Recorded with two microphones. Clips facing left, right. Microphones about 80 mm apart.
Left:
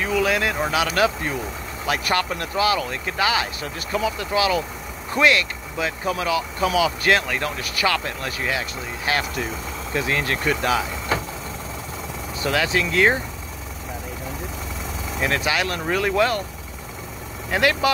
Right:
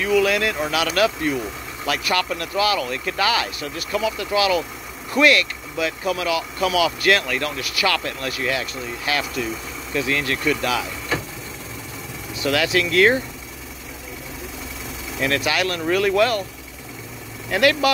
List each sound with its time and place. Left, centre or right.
0.0 s speech: left
12.4 s speech: left
15.1 s speech: left
17.5 s speech: left